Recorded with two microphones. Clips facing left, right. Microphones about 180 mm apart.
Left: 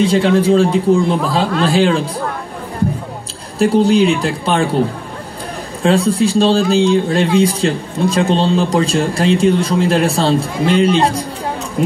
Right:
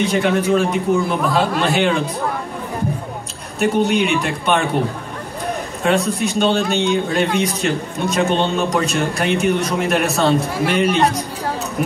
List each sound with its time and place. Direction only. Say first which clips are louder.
0.0 s a man's voice: left 5 dB; 30° left (ahead or behind)
3.5 s speech: left 5 dB; 30° left (ahead or behind)
5.8 s a man's voice: left 5 dB; 30° left (ahead or behind)